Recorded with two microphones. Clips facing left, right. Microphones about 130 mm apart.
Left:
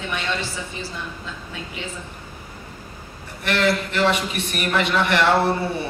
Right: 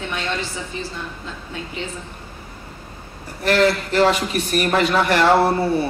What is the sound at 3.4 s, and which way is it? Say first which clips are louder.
A man's voice: right 4 dB; 40° right (ahead or behind).